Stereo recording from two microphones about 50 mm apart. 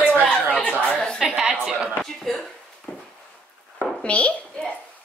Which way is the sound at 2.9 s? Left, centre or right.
Left.